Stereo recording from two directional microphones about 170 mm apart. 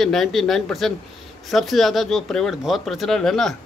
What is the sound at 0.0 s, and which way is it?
A man's voice, centre (ahead or behind).